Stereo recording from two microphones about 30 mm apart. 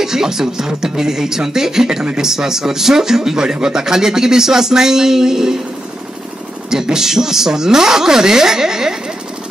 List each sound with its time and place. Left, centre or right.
0.0 s speech: centre
6.7 s speech: centre